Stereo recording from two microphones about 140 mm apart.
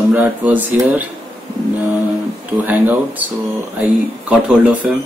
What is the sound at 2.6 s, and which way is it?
Speech, 15° right (ahead or behind).